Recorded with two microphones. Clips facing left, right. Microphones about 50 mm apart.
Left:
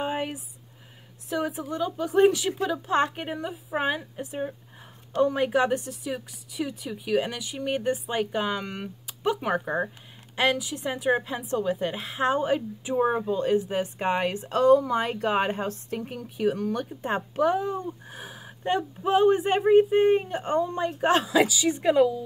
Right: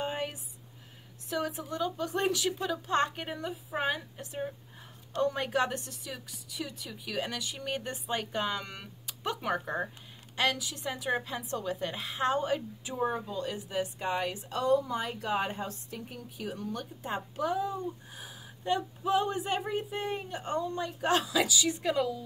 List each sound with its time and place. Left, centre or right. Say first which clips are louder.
0.0 s a sound: left 5 dB; centre
1.3 s a woman's voice: left 5 dB; centre
12.9 s speech: left 8 dB; left
16.7 s speech: left 7 dB; left